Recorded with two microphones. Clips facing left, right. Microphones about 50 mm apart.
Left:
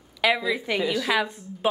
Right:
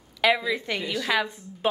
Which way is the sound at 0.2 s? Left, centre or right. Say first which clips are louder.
Even; centre.